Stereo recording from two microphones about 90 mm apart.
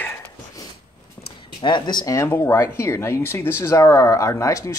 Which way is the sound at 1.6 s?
55° left (ahead or behind).